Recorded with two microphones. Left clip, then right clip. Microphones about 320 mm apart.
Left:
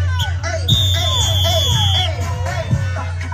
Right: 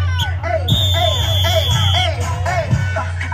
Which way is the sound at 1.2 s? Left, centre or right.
Right.